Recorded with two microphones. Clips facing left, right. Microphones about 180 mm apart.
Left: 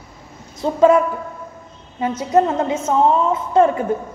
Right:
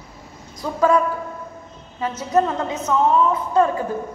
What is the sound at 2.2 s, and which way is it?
A woman's voice, 25° left (ahead or behind).